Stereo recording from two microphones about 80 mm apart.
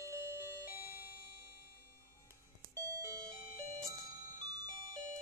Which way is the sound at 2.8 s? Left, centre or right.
Right.